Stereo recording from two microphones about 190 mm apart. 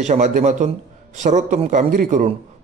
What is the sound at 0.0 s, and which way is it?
A man's voice, 40° right (ahead or behind).